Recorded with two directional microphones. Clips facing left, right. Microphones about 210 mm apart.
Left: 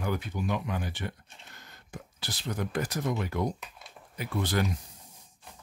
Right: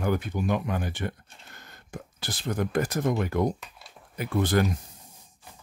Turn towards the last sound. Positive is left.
turn(degrees=-50)  # may be behind; listen again after turning